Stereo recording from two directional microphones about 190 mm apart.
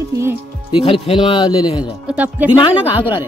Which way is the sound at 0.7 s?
30° left (ahead or behind).